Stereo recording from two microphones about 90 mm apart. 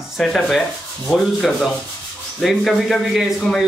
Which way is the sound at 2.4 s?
Centre (ahead or behind).